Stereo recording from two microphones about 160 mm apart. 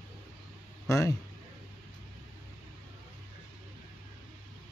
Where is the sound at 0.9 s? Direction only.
20° left (ahead or behind).